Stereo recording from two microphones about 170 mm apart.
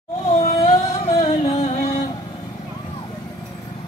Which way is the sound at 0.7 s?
40° left (ahead or behind).